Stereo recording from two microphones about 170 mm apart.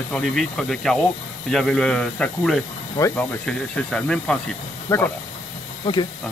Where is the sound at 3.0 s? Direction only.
15° left (ahead or behind).